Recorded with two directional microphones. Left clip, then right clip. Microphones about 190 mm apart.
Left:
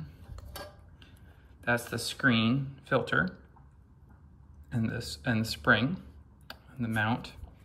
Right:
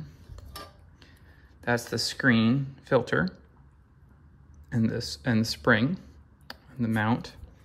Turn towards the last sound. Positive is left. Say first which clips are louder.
# right 3 dB
turn(degrees=-15)  # may be behind; listen again after turning